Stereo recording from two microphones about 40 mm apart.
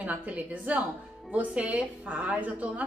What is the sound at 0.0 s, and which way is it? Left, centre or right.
A woman's voice, right.